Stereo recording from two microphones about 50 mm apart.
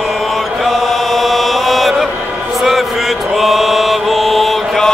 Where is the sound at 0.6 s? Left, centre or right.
Centre.